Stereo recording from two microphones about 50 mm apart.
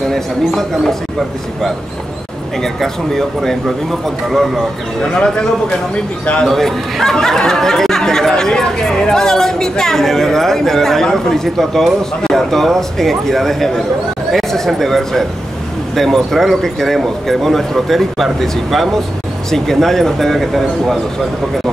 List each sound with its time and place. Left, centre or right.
0.1 s speech: centre
2.6 s speech: centre
5.0 s speech: centre